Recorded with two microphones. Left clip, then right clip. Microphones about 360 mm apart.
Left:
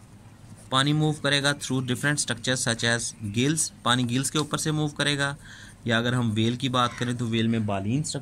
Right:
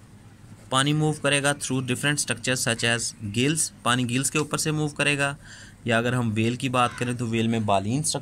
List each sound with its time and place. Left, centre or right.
0.7 s speech: centre
7.6 s speech: right